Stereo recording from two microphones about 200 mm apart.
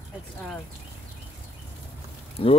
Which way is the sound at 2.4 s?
25° left (ahead or behind).